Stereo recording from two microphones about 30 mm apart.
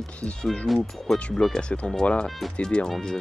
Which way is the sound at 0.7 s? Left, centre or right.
Centre.